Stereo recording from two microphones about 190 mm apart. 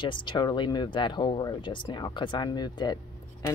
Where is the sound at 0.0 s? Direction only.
25° left (ahead or behind).